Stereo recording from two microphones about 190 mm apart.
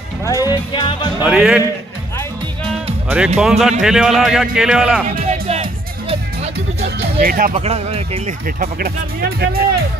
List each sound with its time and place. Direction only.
0.2 s speech: 20° left (ahead or behind)
1.2 s a man's voice: 5° right (ahead or behind)
3.3 s a man's voice: 5° right (ahead or behind)
5.2 s music: 35° right (ahead or behind)
6.8 s music: 55° right (ahead or behind)
7.5 s speech: 35° right (ahead or behind)
8.5 s speech: 50° right (ahead or behind)